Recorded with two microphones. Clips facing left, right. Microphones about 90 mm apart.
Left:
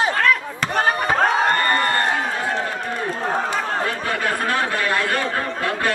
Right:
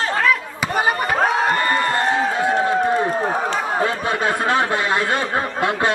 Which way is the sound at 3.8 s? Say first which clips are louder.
Right 3 dB; 20° right (ahead or behind).